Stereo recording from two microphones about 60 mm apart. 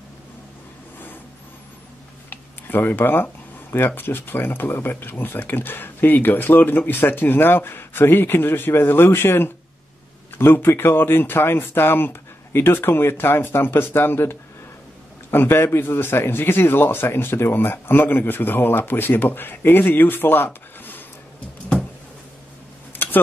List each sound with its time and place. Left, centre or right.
2.2 s a sound: left
3.7 s speech: left
15.3 s speech: left